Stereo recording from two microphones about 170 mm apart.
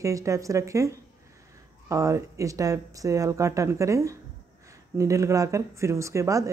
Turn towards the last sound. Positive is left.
turn(degrees=-20)  # may be behind; listen again after turning